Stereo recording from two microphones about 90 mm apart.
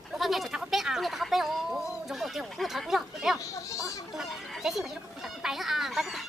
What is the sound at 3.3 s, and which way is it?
Goat, 40° left (ahead or behind).